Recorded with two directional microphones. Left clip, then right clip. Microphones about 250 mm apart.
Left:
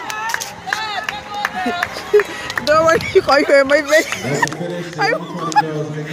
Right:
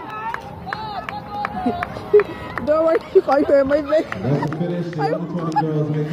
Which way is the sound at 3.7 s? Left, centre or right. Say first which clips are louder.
Left 5 dB; left.